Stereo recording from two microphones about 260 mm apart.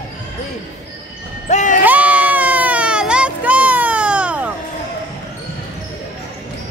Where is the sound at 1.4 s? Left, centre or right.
Left.